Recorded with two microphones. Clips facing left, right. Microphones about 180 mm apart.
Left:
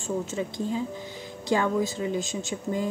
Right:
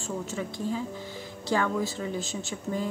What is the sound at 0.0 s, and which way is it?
Speech, 20° left (ahead or behind).